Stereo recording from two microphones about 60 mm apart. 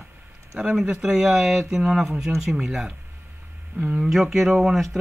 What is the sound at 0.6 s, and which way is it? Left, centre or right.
Speech, centre.